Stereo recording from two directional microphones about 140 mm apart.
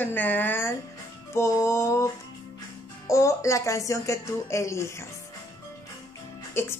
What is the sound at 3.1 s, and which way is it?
A woman's voice, 20° left (ahead or behind).